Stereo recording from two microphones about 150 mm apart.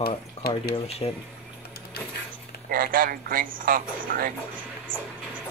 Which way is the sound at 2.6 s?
70° right (ahead or behind).